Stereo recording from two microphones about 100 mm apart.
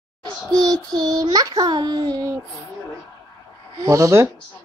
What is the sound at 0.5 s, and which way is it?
Child singing, 40° right (ahead or behind).